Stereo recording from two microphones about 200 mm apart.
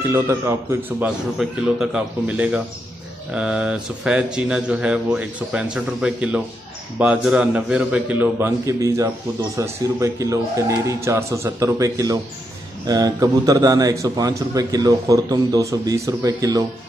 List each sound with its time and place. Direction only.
0.1 s a man's voice: 15° right (ahead or behind)